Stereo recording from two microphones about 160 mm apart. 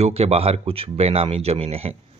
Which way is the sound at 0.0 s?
40° right (ahead or behind).